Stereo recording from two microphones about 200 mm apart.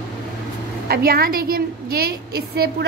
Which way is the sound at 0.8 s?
50° right (ahead or behind).